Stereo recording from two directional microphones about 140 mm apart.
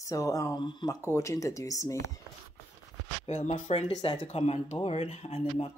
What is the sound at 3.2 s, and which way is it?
Speech, 50° left (ahead or behind).